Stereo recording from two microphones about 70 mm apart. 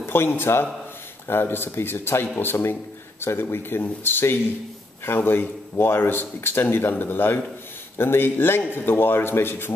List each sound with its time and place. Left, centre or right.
0.0 s speech: left